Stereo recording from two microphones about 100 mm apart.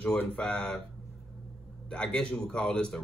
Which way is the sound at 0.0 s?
15° left (ahead or behind).